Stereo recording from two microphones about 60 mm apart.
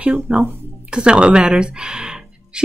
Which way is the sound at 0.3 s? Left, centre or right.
Centre.